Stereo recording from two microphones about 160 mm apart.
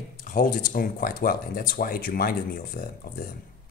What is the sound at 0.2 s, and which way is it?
Speech, 55° left (ahead or behind).